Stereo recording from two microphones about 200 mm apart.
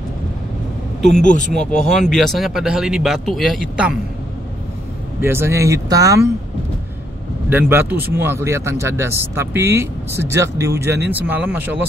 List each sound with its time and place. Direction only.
1.2 s speech: 40° left (ahead or behind)
1.7 s speech: 5° left (ahead or behind)
5.2 s a man's voice: 10° right (ahead or behind)
7.4 s a man's voice: 10° right (ahead or behind)